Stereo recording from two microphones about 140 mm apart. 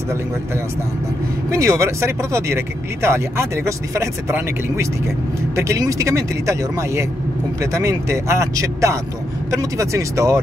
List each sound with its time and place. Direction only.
1.5 s speech: 20° right (ahead or behind)